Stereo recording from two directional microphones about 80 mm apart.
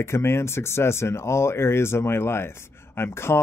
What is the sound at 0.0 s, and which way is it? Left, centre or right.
Speech, left.